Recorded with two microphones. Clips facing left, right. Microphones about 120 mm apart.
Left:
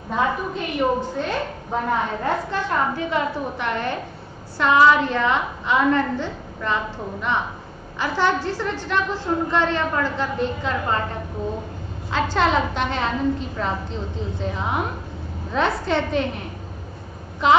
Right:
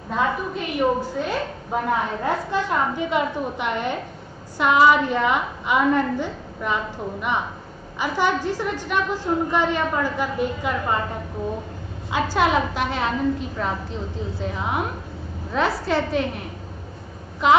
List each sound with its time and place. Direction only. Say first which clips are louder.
0.1 s a woman's voice: left 1 dB; centre (ahead or behind)
12.1 s a woman's voice: even; 10° right (ahead or behind)